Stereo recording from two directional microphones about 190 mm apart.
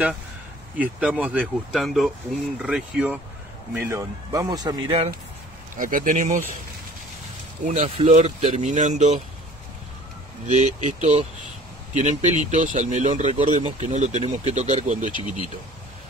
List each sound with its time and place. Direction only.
0.7 s speech: 5° right (ahead or behind); by 5.1 s 25° right (ahead or behind)
5.8 s speech: 45° right (ahead or behind)
7.6 s speech: 35° right (ahead or behind)
10.4 s speech: 40° right (ahead or behind)